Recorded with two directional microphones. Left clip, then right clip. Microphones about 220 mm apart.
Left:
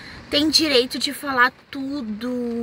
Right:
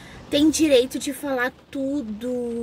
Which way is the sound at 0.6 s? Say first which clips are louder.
Right 1 dB; 10° left (ahead or behind).